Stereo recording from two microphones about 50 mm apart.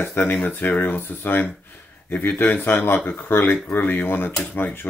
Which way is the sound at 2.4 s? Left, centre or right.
Left.